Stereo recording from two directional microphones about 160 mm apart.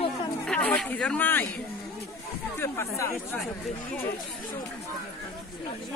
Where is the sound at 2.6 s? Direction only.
15° left (ahead or behind).